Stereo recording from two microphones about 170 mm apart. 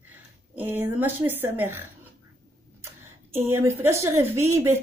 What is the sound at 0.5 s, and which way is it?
A woman's voice, 10° right (ahead or behind).